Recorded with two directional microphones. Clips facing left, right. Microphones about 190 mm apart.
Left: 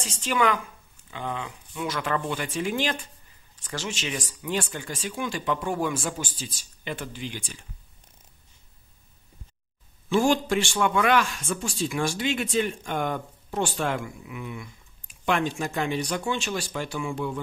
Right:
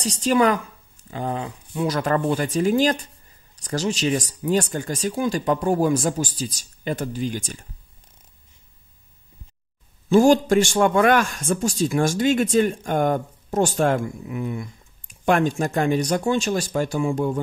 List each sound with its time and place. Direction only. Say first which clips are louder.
0.0 s speech: right 6 dB; 40° right (ahead or behind)
10.0 s a man's voice: right 7 dB; 40° right (ahead or behind)